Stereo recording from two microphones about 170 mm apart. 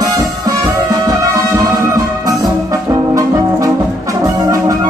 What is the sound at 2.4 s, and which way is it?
Brass instrument, 20° right (ahead or behind).